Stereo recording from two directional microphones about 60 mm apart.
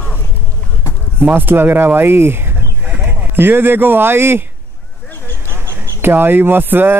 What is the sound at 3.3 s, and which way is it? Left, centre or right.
Speech, right.